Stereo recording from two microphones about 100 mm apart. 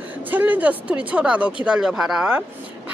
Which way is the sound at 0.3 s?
15° right (ahead or behind).